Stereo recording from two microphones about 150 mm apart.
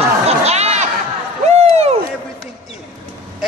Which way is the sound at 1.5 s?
45° right (ahead or behind).